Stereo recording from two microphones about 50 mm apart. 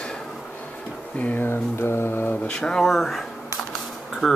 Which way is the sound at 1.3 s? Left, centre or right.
Left.